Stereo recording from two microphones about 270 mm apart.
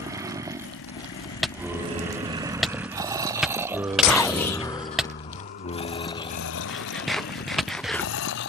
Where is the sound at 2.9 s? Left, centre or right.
Centre.